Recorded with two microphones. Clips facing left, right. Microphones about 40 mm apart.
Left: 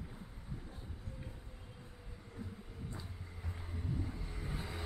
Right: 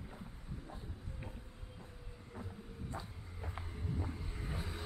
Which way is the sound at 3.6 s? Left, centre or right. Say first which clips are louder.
Left 4 dB; centre.